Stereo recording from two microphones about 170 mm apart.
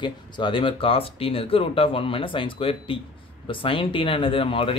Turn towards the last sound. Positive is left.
turn(degrees=30)  # may be behind; listen again after turning